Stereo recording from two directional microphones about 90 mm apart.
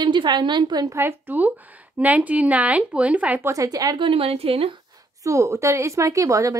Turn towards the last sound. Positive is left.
turn(degrees=-35)  # may be behind; listen again after turning